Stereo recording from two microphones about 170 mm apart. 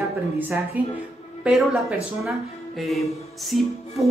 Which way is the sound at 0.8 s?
10° right (ahead or behind).